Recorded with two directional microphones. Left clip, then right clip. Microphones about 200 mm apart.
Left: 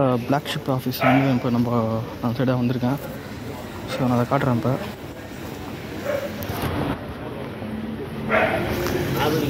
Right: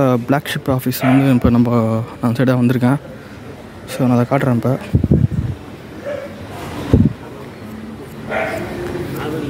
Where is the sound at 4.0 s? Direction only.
60° right (ahead or behind).